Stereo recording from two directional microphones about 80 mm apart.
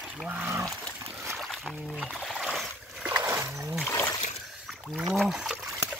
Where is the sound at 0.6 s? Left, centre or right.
Centre.